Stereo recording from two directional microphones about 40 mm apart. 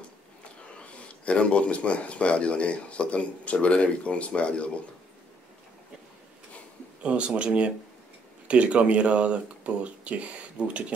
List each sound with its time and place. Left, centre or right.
0.4 s speech: left
7.0 s speech: right